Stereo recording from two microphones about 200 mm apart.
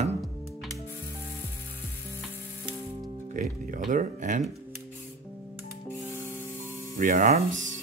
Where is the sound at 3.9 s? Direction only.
40° right (ahead or behind).